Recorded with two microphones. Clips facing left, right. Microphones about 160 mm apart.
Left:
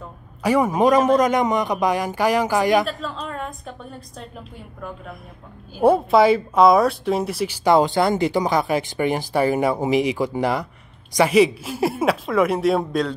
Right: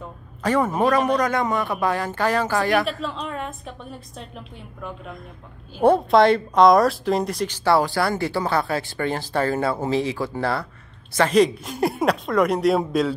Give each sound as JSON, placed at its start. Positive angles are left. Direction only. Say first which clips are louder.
{"t": 0.4, "sound": "speech", "louder": "left 3 dB", "side_deg": 10}
{"t": 2.8, "sound": "a woman's voice", "louder": "even", "side_deg": 0}
{"t": 5.8, "sound": "speech", "louder": "left 1 dB", "side_deg": 5}